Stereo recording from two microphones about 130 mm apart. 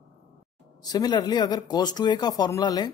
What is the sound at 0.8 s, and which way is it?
Speech, 30° left (ahead or behind).